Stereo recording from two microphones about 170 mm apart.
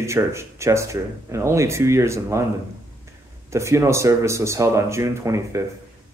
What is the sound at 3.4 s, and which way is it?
Speech, 15° right (ahead or behind).